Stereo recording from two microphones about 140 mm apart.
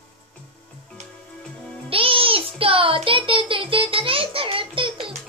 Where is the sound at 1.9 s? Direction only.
40° right (ahead or behind).